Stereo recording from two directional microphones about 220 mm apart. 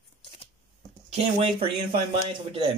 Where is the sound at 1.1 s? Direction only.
25° right (ahead or behind).